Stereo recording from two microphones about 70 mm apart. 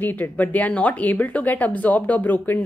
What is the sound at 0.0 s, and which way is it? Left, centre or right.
A woman's voice, left.